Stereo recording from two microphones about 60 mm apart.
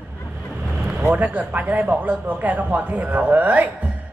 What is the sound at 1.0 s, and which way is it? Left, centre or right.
A man's voice, right.